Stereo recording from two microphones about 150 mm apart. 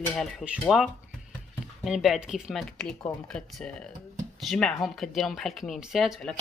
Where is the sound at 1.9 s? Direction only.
Centre (ahead or behind).